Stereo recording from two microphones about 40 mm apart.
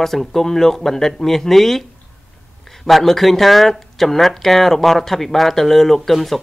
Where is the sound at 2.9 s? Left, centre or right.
Centre.